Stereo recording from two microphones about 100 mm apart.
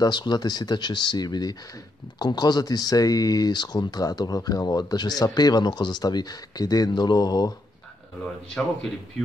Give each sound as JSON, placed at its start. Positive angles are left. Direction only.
{"t": 0.0, "sound": "speech", "side_deg": 45}